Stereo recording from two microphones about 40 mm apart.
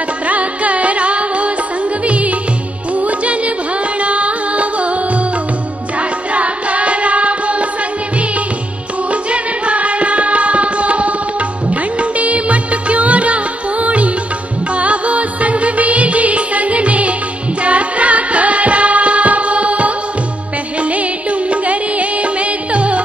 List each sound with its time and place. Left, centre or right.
0.3 s music: right
6.3 s singing: right
9.1 s music: right
11.7 s music of bollywood: right
14.8 s music: right